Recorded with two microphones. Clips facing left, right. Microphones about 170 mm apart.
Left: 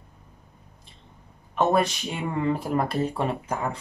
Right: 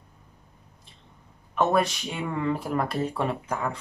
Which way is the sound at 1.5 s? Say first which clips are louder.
Left 1 dB; 30° left (ahead or behind).